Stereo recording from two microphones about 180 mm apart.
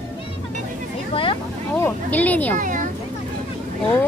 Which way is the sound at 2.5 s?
45° right (ahead or behind).